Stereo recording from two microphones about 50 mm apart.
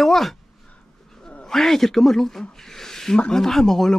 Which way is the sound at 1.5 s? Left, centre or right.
Centre.